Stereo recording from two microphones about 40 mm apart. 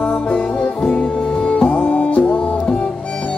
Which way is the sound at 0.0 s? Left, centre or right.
Left.